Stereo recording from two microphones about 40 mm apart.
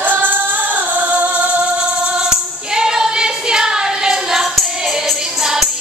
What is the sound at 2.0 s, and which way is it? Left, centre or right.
Singing, centre.